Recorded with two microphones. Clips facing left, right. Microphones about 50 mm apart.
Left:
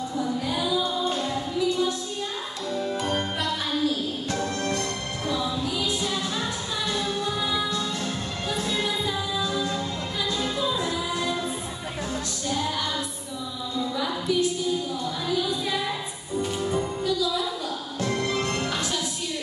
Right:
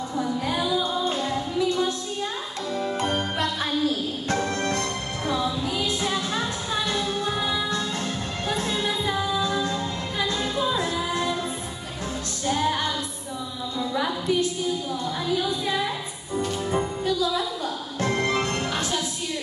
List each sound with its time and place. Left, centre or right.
0.2 s music: right
2.7 s music: right
12.4 s music: right
13.9 s a sound: right
16.7 s music: right